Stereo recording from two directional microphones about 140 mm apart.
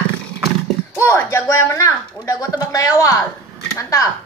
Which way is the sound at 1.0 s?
20° left (ahead or behind).